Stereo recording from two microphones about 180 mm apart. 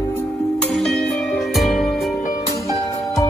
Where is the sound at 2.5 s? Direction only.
20° left (ahead or behind).